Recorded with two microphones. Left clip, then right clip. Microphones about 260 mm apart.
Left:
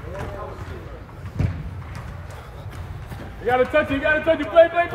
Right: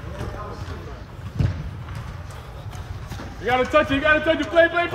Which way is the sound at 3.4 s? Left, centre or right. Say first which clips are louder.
Even; right.